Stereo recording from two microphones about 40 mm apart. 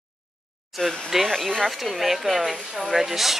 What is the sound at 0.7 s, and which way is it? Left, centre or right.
Speech, centre.